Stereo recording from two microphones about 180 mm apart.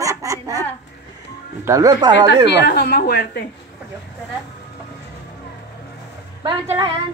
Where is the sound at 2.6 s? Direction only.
65° left (ahead or behind).